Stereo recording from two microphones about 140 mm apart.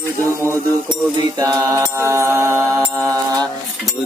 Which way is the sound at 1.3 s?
25° right (ahead or behind).